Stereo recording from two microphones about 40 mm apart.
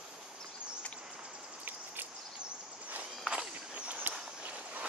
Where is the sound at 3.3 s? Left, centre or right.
Right.